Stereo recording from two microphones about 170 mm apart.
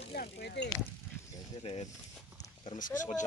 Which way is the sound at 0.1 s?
70° left (ahead or behind).